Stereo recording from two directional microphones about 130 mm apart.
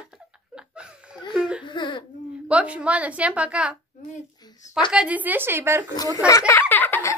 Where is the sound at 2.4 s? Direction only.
10° right (ahead or behind).